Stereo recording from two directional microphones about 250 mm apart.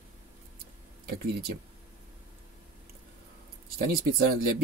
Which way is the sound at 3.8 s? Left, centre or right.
Right.